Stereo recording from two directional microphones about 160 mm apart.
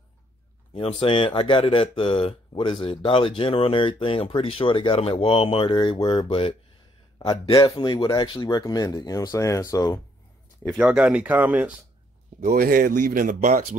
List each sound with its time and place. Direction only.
0.7 s speech: 35° left (ahead or behind); by 10.0 s 20° left (ahead or behind)
10.8 s speech: 10° right (ahead or behind)
12.4 s speech: 60° right (ahead or behind)